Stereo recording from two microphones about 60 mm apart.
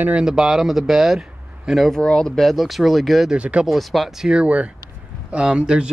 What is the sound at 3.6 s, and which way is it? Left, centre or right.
Speech, centre.